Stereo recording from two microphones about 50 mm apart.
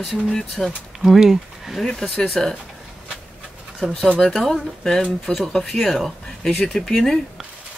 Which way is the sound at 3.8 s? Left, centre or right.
Centre.